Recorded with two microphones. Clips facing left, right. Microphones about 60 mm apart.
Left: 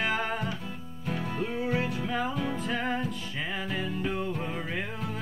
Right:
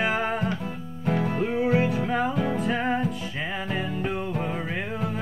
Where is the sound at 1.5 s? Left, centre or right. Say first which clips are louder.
Right 7 dB; right.